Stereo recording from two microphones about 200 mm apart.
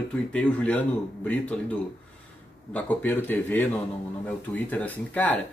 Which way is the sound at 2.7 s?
10° left (ahead or behind).